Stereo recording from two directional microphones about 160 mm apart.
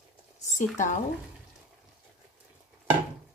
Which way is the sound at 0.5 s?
50° left (ahead or behind).